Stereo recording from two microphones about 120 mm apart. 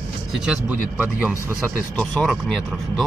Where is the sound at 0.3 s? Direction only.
5° right (ahead or behind).